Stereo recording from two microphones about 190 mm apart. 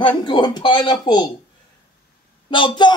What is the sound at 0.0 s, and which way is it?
Speech, 25° left (ahead or behind).